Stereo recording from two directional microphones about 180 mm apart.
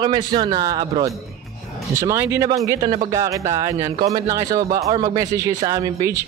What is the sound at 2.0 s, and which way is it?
Speech, 15° right (ahead or behind).